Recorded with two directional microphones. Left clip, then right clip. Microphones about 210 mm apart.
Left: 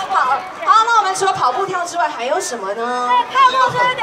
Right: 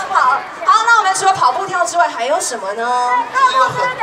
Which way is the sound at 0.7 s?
55° right (ahead or behind).